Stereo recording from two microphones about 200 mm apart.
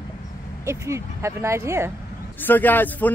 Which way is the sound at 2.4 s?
10° left (ahead or behind).